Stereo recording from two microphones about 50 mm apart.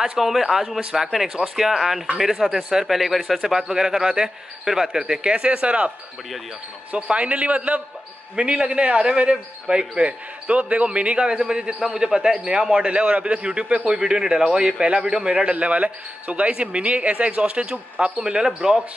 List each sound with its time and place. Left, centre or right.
0.0 s speech: centre
6.9 s a man's voice: right
15.5 s a man's voice: right